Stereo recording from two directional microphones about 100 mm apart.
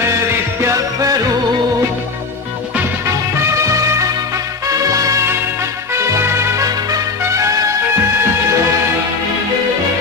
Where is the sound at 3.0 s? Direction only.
30° right (ahead or behind).